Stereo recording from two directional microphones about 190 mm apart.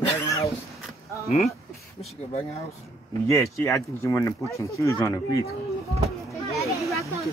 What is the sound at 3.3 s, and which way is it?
Speech, 15° left (ahead or behind).